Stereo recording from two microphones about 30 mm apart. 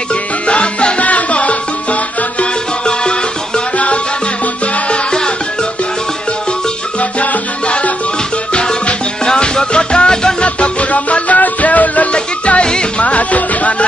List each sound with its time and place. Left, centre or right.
0.1 s music: left
2.8 s music: left
3.7 s music: left
7.0 s music: left
8.5 s music: left
12.1 s music: left
13.0 s music: left